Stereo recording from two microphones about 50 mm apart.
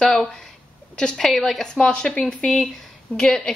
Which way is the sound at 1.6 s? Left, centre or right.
Centre.